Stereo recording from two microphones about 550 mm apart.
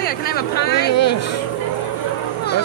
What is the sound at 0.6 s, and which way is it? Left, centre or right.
Speech, left.